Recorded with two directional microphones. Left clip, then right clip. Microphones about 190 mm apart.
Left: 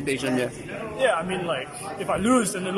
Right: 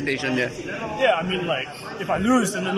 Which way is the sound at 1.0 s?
5° right (ahead or behind).